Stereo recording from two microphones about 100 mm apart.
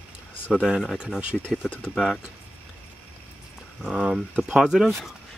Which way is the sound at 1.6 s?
15° left (ahead or behind).